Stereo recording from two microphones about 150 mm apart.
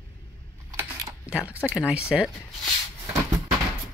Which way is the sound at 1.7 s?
5° right (ahead or behind).